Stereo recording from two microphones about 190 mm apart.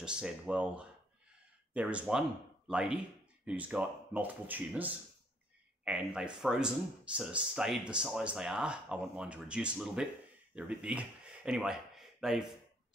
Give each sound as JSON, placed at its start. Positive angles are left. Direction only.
{"t": 0.0, "sound": "speech", "side_deg": -5}